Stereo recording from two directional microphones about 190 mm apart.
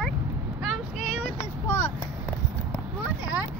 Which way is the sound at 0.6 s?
Centre (ahead or behind).